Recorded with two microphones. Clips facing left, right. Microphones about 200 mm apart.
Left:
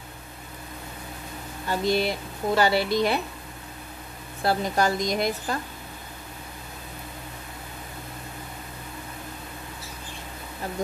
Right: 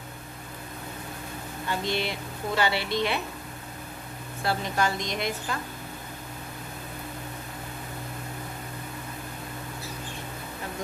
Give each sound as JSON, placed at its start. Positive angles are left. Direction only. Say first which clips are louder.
{"t": 1.7, "sound": "speech", "louder": "left 5 dB", "side_deg": 40}
{"t": 4.5, "sound": "speech", "louder": "left 4 dB", "side_deg": 40}